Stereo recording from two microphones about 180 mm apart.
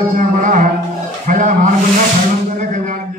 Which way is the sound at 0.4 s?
45° right (ahead or behind).